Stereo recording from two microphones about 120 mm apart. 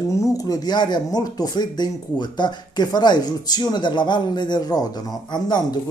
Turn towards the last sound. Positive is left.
turn(degrees=35)  # may be behind; listen again after turning